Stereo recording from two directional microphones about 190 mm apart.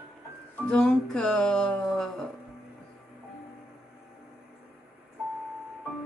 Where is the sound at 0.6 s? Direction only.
5° left (ahead or behind).